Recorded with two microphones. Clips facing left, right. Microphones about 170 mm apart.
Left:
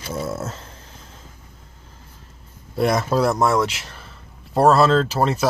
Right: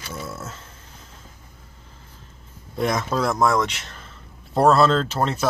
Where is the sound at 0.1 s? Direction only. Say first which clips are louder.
Left 7 dB; 40° left (ahead or behind).